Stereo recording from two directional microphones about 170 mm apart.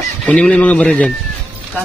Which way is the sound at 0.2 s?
5° left (ahead or behind).